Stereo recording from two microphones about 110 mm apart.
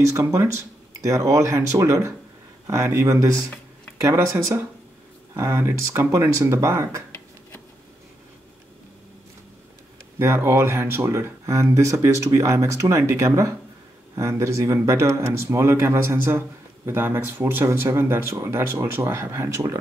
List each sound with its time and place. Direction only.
0.0 s speech: 25° right (ahead or behind)
10.1 s speech: 20° right (ahead or behind)